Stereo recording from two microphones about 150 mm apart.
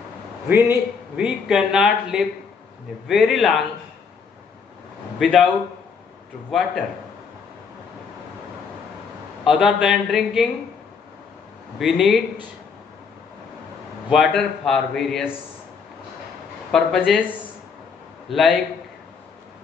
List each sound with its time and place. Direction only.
0.5 s a man's voice: 15° right (ahead or behind)
5.2 s a man's voice: centre (ahead or behind)
9.4 s a man's voice: 5° right (ahead or behind)
11.8 s a man's voice: centre (ahead or behind)
14.1 s a man's voice: centre (ahead or behind)
16.7 s a man's voice: centre (ahead or behind)
18.3 s a man's voice: centre (ahead or behind)